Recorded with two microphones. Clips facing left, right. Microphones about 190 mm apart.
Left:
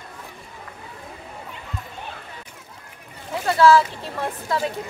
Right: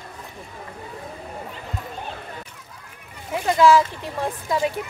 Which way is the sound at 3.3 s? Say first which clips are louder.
Even; 15° right (ahead or behind).